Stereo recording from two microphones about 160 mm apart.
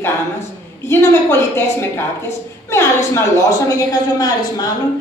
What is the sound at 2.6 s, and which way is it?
A woman's voice, 15° left (ahead or behind).